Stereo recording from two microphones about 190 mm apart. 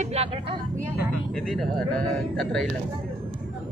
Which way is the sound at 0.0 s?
35° right (ahead or behind).